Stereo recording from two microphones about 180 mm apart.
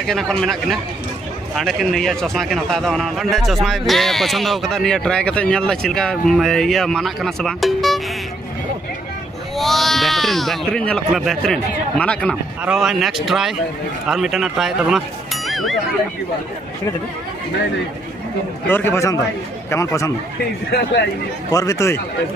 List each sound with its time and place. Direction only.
0.0 s speech: centre (ahead or behind)
9.6 s speech: centre (ahead or behind)
18.7 s speech: 10° left (ahead or behind)
21.5 s speech: 20° left (ahead or behind)